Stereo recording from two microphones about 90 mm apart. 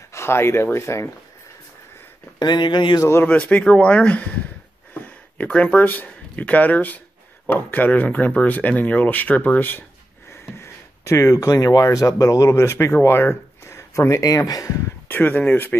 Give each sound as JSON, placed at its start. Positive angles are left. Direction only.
{"t": 0.1, "sound": "speech", "side_deg": 30}
{"t": 2.3, "sound": "speech", "side_deg": 55}
{"t": 3.0, "sound": "speech", "side_deg": 30}
{"t": 3.3, "sound": "speech", "side_deg": 15}
{"t": 10.6, "sound": "speech", "side_deg": 30}
{"t": 15.0, "sound": "speech", "side_deg": 20}